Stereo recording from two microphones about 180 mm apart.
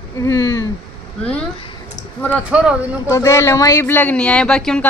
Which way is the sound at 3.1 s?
15° left (ahead or behind).